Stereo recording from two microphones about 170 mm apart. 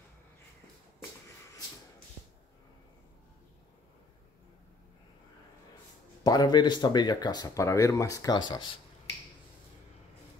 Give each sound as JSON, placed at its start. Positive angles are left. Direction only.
{"t": 6.2, "sound": "speech", "side_deg": 25}